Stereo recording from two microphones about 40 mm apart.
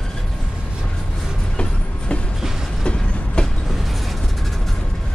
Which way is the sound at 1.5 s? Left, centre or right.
Left.